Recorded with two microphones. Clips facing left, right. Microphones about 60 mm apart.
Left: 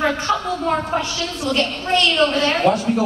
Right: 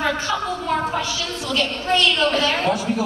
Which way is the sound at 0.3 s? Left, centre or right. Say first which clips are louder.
Left 3 dB; left.